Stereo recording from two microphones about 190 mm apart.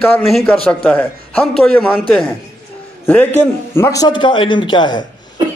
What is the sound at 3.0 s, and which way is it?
A man's voice, 10° left (ahead or behind).